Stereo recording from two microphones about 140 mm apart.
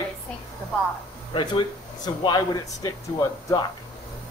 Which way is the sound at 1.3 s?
35° left (ahead or behind).